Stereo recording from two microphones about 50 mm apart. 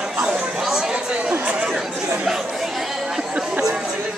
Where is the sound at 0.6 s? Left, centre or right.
Centre.